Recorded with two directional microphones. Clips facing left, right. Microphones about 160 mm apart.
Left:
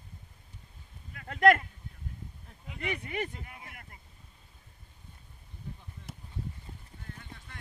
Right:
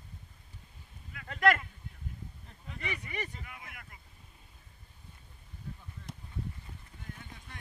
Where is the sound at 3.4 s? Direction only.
35° left (ahead or behind).